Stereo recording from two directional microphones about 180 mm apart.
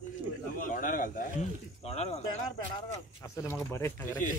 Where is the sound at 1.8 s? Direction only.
35° left (ahead or behind).